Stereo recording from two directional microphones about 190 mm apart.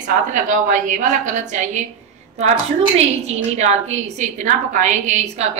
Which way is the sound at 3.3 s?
35° right (ahead or behind).